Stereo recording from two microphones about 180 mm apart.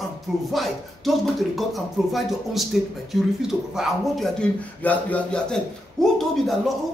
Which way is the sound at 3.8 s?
Centre (ahead or behind).